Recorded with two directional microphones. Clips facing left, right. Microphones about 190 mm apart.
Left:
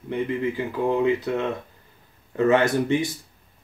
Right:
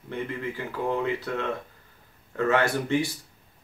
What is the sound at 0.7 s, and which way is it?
Speech, 20° left (ahead or behind).